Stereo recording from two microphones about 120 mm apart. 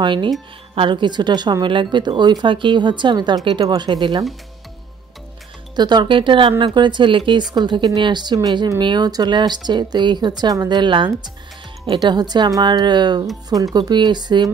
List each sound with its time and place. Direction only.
0.0 s speech: 40° right (ahead or behind)
5.8 s speech: 35° right (ahead or behind)